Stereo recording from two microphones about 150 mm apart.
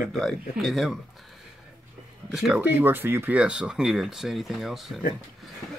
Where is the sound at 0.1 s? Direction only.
Centre (ahead or behind).